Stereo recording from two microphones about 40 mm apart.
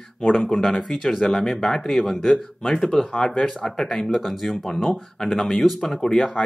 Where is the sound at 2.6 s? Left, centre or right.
Centre.